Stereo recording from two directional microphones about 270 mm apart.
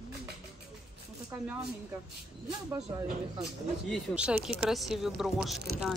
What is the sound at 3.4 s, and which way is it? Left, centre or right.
Speech, centre.